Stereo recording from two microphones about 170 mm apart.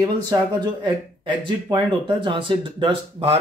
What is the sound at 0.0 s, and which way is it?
Speech, 20° right (ahead or behind).